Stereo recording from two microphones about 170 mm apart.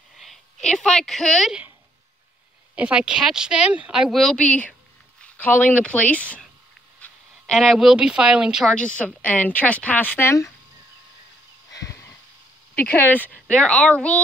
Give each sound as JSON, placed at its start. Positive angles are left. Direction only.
{"t": 0.2, "sound": "a woman's voice", "side_deg": 0}
{"t": 2.7, "sound": "speech", "side_deg": -5}
{"t": 11.7, "sound": "a sound", "side_deg": 20}
{"t": 12.9, "sound": "speech", "side_deg": 10}